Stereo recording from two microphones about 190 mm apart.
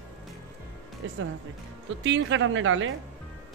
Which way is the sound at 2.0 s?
75° right (ahead or behind).